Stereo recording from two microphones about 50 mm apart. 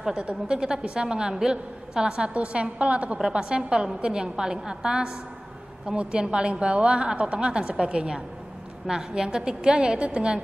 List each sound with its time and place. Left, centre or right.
0.1 s a woman's voice: right
3.2 s a woman's voice: centre